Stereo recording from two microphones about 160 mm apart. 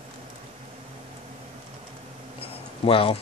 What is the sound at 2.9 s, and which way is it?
Speech, 35° left (ahead or behind).